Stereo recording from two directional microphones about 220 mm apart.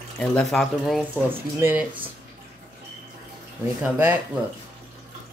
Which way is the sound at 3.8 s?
5° right (ahead or behind).